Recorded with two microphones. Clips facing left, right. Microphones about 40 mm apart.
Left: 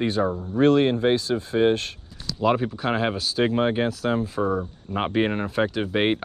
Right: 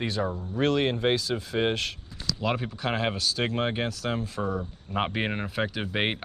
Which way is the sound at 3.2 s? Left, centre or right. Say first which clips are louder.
Left 5 dB; centre.